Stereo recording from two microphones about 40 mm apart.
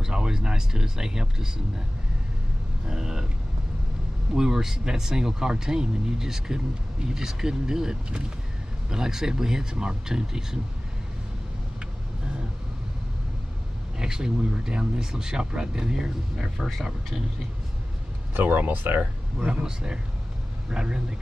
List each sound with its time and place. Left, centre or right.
0.0 s speech: centre
2.9 s speech: centre
4.4 s speech: centre
13.9 s speech: centre
18.3 s speech: right
19.6 s speech: right